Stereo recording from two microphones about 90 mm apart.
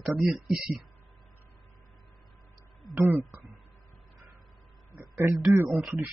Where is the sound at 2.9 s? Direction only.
20° right (ahead or behind).